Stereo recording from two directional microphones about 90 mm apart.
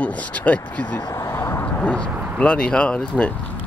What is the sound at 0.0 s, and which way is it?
Speech, 15° left (ahead or behind).